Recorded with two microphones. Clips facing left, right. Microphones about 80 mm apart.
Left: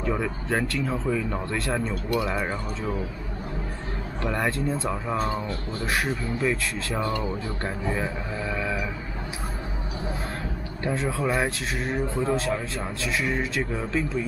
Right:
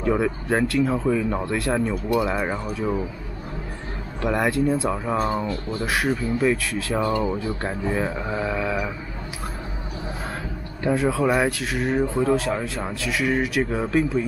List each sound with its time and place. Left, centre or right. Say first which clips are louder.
0.0 s speech: right 5 dB; centre
4.2 s speech: right 5 dB; centre
8.3 s a sound: right 4 dB; right
11.1 s speech: right 4 dB; centre
12.2 s speech: right 4 dB; centre
12.4 s speech: right 2 dB; right